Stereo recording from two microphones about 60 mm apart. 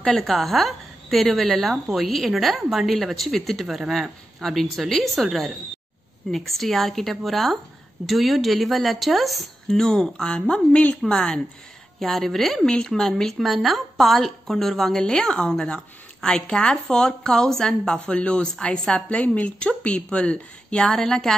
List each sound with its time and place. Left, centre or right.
0.0 s a woman's voice: centre